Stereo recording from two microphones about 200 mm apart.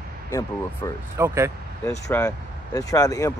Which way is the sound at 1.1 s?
15° right (ahead or behind).